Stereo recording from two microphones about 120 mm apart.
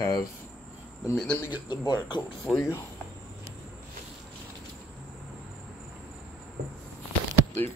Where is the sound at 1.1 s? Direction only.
5° left (ahead or behind).